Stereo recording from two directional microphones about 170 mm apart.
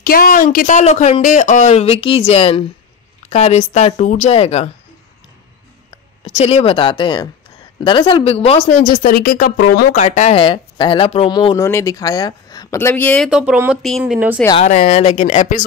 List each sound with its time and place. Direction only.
0.0 s speech: 60° left (ahead or behind); by 4.6 s 40° left (ahead or behind)
6.2 s speech: 35° left (ahead or behind); by 9.8 s 65° left (ahead or behind)
9.9 s speech: 45° left (ahead or behind)
10.4 s speech: 30° left (ahead or behind)
12.7 s speech: 10° left (ahead or behind)
13.3 s speech: 5° right (ahead or behind)
14.6 s speech: 40° left (ahead or behind)